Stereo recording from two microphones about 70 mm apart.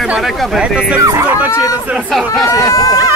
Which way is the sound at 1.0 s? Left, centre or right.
Right.